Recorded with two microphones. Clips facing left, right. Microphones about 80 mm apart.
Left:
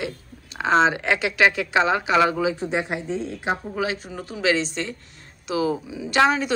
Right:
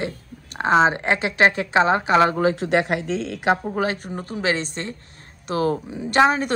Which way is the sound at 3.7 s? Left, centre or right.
Right.